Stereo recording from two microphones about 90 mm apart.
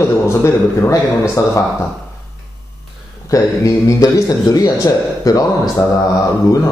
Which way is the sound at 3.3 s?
40° left (ahead or behind).